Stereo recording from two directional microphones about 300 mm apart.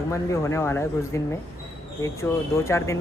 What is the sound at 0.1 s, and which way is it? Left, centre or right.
Speech, centre.